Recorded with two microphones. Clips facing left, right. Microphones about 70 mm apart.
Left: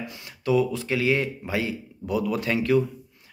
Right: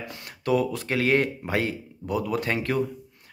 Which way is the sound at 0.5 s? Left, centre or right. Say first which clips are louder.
Left 1 dB; right.